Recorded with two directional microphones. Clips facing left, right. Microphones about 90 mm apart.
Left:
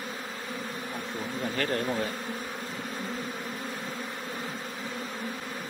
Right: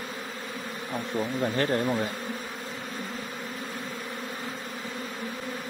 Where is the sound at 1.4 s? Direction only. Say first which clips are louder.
Right 3 dB; 25° right (ahead or behind).